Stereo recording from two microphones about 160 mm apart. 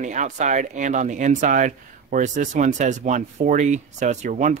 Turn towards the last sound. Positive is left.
turn(degrees=-50)  # may be behind; listen again after turning